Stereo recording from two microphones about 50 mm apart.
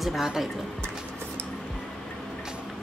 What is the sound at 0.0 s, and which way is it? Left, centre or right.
Speech, centre.